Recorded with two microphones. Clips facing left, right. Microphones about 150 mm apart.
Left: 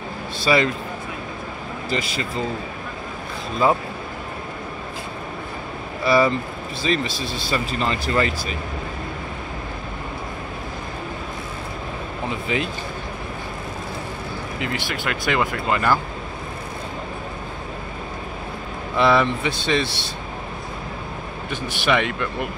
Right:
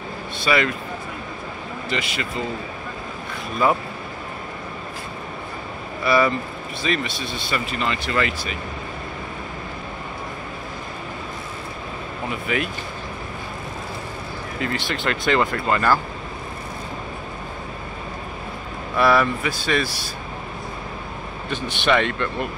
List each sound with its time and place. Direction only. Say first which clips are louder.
0.4 s speech: left 2 dB; 30° left (ahead or behind)
1.9 s speech: left 2 dB; 35° left (ahead or behind)
6.0 s speech: left 1 dB; 30° left (ahead or behind)
12.3 s speech: even; 30° left (ahead or behind)
14.6 s speech: right 3 dB; 15° left (ahead or behind)
18.9 s speech: even; 20° left (ahead or behind)
21.5 s speech: right 1 dB; 10° left (ahead or behind)